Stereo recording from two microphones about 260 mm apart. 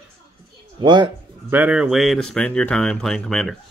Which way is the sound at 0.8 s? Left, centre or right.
Centre.